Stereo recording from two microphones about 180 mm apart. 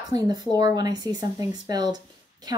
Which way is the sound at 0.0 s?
20° right (ahead or behind).